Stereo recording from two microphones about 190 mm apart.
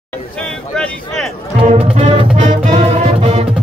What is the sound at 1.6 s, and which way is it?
Music, 30° right (ahead or behind).